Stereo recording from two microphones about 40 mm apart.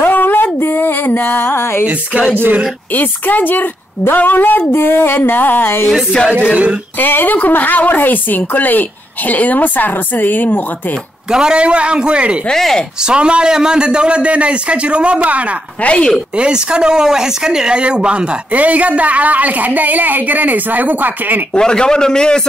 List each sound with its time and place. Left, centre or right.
0.0 s a sound: left
0.6 s a sound: left
2.1 s music: right
2.9 s a woman's voice: left
4.6 s music: left
7.0 s music: left
7.3 s a woman's voice: left
11.2 s a man's voice: centre
12.5 s speech: centre
13.0 s a man's voice: right
15.8 s speech: left
16.3 s a man's voice: right
18.5 s a woman's voice: right
21.5 s a man's voice: centre